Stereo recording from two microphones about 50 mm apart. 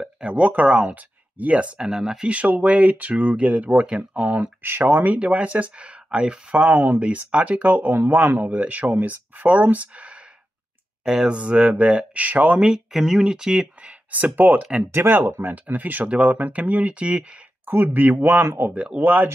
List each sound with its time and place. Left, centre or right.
0.0 s speech: right
1.9 s speech: centre
2.2 s speech: right
4.6 s speech: right
11.1 s speech: centre
11.3 s speech: right
12.5 s speech: centre
14.1 s speech: right
14.9 s speech: right
17.9 s speech: right